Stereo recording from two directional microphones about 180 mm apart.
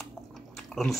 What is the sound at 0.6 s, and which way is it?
Chewing, centre (ahead or behind).